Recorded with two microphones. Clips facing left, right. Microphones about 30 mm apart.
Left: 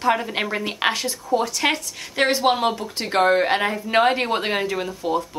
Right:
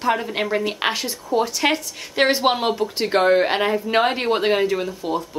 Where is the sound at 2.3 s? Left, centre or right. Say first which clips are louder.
Left 1 dB; centre.